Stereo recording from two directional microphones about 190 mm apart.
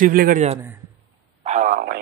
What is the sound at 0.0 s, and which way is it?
Speech, 50° right (ahead or behind).